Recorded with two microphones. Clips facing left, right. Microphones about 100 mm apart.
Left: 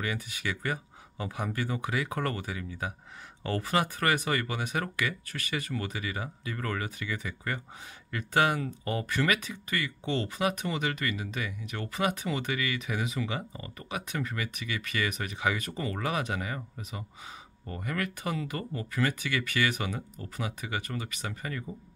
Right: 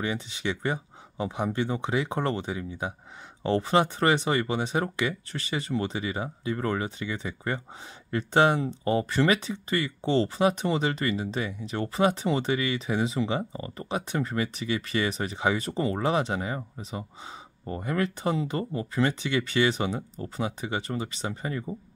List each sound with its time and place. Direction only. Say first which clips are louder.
0.0 s speech: right 4 dB; 25° right (ahead or behind)